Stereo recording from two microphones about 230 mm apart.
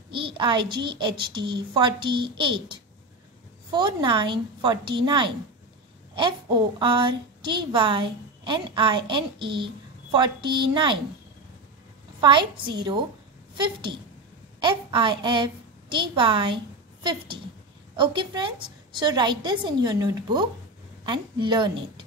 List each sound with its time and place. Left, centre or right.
0.1 s a woman's voice: right
12.2 s a woman's voice: centre
14.6 s a woman's voice: right